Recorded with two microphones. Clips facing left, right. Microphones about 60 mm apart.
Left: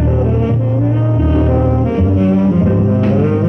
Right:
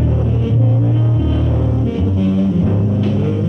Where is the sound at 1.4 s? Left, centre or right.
Left.